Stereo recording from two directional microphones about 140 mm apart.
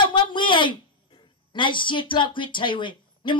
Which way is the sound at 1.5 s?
35° left (ahead or behind).